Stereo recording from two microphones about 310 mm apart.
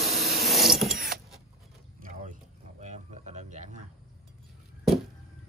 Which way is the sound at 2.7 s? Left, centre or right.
Right.